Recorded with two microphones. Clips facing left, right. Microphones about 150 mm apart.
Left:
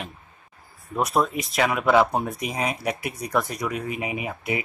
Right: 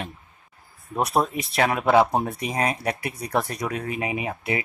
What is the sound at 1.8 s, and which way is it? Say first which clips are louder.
Speech: right 1 dB; 15° right (ahead or behind).